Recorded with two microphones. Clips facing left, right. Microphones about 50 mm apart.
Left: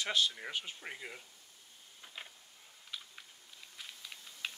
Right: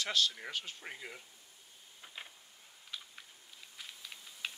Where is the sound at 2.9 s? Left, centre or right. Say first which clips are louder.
Even; centre.